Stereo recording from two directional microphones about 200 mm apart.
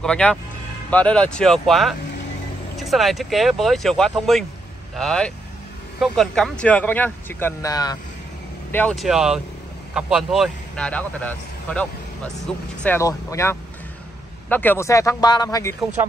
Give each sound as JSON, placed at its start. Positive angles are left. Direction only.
{"t": 0.0, "sound": "speech", "side_deg": 5}
{"t": 8.7, "sound": "speech", "side_deg": 5}